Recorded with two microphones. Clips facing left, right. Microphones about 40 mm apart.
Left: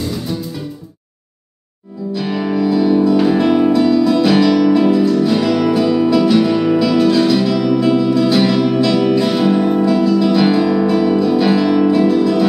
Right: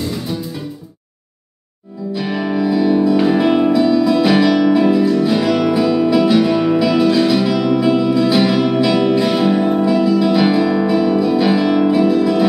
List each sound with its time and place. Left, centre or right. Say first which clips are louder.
2.1 s music: left 1 dB; centre